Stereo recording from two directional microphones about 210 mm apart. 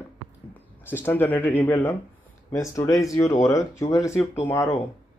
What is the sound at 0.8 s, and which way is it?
Speech, 10° left (ahead or behind).